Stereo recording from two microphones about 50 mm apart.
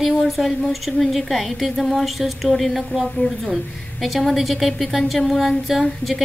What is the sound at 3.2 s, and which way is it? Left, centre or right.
Speech, left.